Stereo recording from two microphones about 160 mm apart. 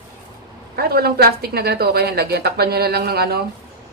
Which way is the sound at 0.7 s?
75° right (ahead or behind).